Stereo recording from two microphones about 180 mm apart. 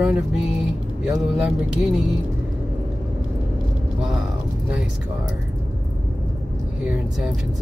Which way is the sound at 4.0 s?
Centre (ahead or behind).